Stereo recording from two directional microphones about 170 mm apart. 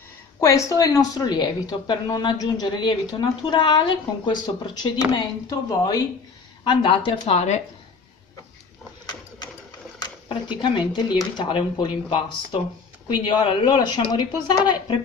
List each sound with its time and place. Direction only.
0.4 s speech: 20° left (ahead or behind); by 7.6 s 40° left (ahead or behind)
9.9 s speech: 25° left (ahead or behind)